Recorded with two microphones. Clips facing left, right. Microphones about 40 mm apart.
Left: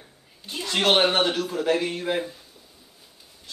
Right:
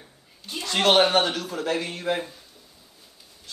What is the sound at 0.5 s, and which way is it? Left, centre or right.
Speech, centre.